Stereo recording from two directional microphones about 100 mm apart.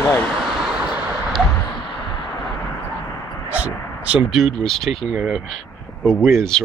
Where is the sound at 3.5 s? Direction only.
15° right (ahead or behind).